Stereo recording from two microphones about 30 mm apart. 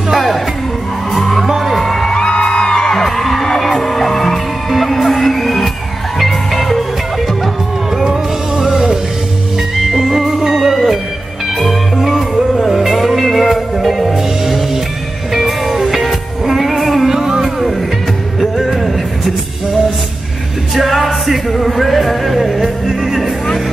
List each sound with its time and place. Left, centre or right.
0.1 s music: centre
2.1 s music: left
3.0 s music: centre
8.0 s music: centre
10.0 s music: centre
15.7 s music: centre
17.1 s music: centre
20.7 s music: centre